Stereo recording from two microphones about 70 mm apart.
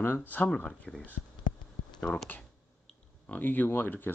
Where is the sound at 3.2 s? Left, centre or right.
Left.